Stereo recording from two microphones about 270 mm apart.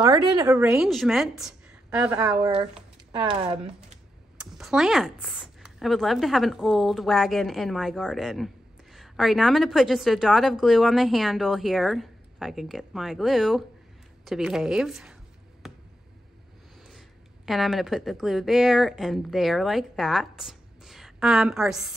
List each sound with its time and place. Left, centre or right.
0.0 s a woman's voice: centre
2.4 s speech: centre
4.4 s a woman's voice: centre
15.6 s a sound: centre
17.5 s a woman's voice: centre